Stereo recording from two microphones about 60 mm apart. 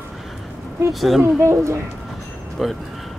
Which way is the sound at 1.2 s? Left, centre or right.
Right.